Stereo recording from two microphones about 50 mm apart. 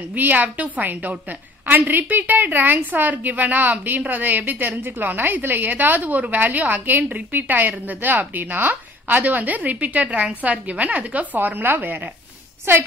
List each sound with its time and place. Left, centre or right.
0.1 s a woman's voice: right
12.7 s a woman's voice: right